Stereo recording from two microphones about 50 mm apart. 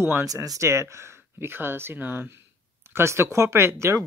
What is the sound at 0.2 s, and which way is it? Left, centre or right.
Speech, right.